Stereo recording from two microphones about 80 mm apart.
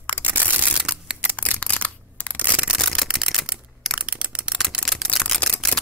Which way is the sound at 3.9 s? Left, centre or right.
Centre.